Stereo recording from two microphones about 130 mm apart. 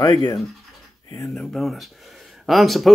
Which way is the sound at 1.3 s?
Centre (ahead or behind).